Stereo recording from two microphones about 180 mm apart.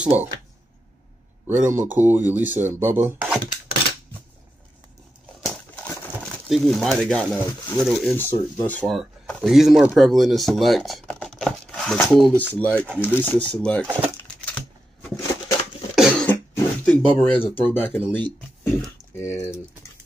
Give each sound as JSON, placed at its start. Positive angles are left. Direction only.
{"t": 0.0, "sound": "speech", "side_deg": -10}
{"t": 1.5, "sound": "speech", "side_deg": -45}
{"t": 1.8, "sound": "speech", "side_deg": -10}
{"t": 5.4, "sound": "speech", "side_deg": 5}
{"t": 13.8, "sound": "speech", "side_deg": -10}
{"t": 14.2, "sound": "a sound", "side_deg": 5}
{"t": 15.9, "sound": "cough", "side_deg": 0}
{"t": 16.5, "sound": "a sound", "side_deg": 10}
{"t": 17.7, "sound": "speech", "side_deg": 10}